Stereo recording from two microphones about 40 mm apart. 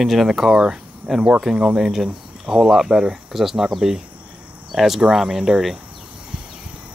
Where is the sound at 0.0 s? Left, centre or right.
Centre.